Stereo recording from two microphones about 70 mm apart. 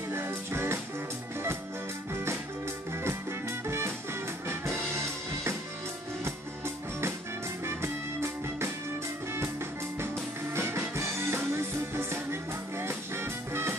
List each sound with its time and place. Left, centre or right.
0.1 s music: right
3.0 s music: right
10.5 s music: right